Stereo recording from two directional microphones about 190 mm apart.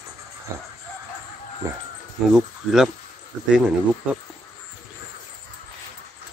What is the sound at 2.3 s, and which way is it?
Speech, centre (ahead or behind).